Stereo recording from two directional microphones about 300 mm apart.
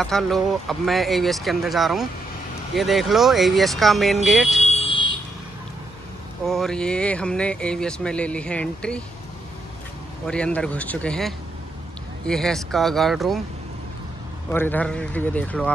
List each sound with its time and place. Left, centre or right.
0.0 s speech: centre
4.6 s vehicle: centre
6.4 s speech: centre
10.2 s speech: centre
14.5 s speech: centre